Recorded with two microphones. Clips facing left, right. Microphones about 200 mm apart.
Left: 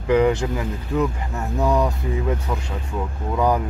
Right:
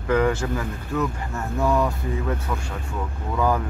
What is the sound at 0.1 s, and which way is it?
Speech, 15° left (ahead or behind).